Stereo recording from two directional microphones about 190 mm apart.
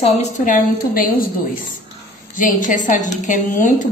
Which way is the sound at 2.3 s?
45° left (ahead or behind).